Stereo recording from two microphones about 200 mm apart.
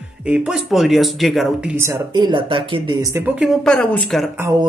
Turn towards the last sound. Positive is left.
turn(degrees=-15)  # may be behind; listen again after turning